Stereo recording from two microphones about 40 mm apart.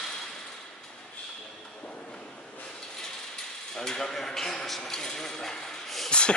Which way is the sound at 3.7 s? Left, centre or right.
Centre.